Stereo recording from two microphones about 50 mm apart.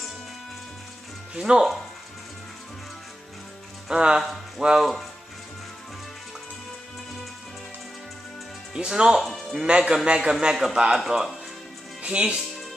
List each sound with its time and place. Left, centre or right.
1.3 s a man's voice: centre
3.9 s a man's voice: centre
8.7 s a man's voice: centre
12.0 s speech: right